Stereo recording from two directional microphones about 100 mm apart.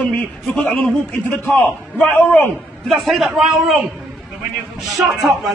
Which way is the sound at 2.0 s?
20° left (ahead or behind).